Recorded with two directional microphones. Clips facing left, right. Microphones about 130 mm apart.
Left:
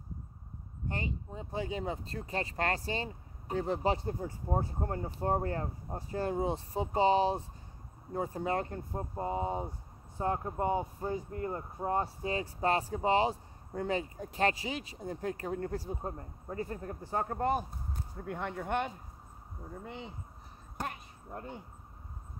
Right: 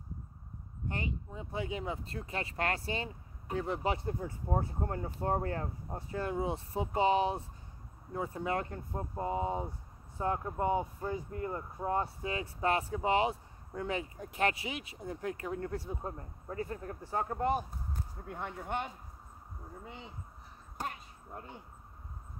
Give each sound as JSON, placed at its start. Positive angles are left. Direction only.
{"t": 0.8, "sound": "speech", "side_deg": 30}
{"t": 18.2, "sound": "speech", "side_deg": 65}
{"t": 20.7, "sound": "a sound", "side_deg": 55}